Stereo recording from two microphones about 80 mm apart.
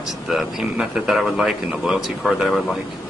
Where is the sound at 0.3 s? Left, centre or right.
Centre.